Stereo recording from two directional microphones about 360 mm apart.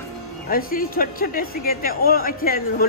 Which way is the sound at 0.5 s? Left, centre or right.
Left.